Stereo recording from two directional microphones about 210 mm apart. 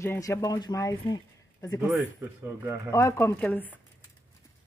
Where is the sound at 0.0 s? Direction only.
10° left (ahead or behind).